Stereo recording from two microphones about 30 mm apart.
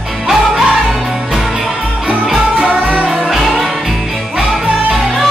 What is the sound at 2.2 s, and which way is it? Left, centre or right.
Music, right.